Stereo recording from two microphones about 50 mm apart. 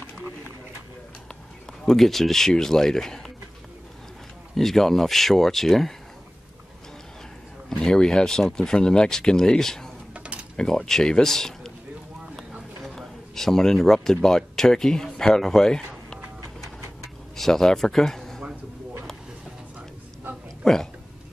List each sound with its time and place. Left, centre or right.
1.9 s speech: centre
4.6 s speech: centre
7.7 s speech: centre
10.1 s a sound: right
10.9 s speech: centre
12.8 s speech: centre
17.4 s a man's voice: centre
20.6 s speech: centre